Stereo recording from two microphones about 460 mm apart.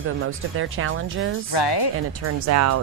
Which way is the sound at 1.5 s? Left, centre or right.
Left.